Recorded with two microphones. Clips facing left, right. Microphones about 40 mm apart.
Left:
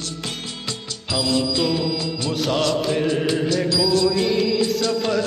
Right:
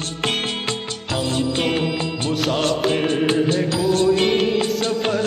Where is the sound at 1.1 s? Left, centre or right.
Right.